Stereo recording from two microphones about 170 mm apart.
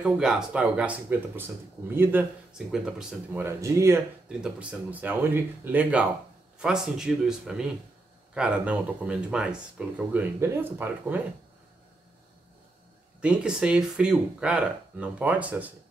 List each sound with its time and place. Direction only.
0.0 s speech: 5° right (ahead or behind)
3.4 s speech: 15° right (ahead or behind)
4.3 s speech: 5° right (ahead or behind)
13.2 s speech: 5° right (ahead or behind)